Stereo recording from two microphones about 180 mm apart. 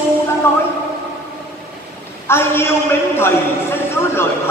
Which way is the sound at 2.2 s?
15° left (ahead or behind).